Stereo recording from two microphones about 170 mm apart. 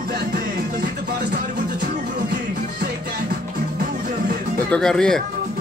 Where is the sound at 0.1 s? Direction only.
70° right (ahead or behind).